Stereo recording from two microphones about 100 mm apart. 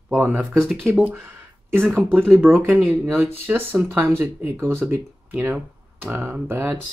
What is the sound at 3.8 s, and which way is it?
Speech, 25° right (ahead or behind).